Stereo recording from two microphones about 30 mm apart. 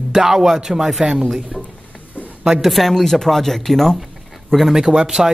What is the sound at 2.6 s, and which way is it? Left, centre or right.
A man's voice, centre.